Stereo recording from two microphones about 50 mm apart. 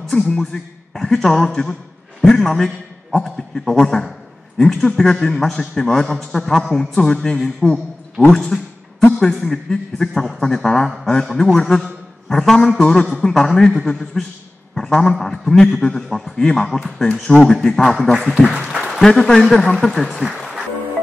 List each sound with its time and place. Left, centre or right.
0.0 s a man's voice: centre
8.2 s speech: left
9.0 s a man's voice: centre
18.3 s speech: centre
18.9 s a man's voice: centre
20.3 s music: centre